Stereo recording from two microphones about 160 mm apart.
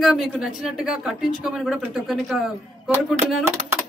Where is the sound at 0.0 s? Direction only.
Centre (ahead or behind).